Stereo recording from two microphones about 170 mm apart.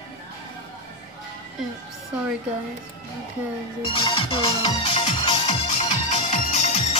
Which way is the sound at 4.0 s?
30° left (ahead or behind).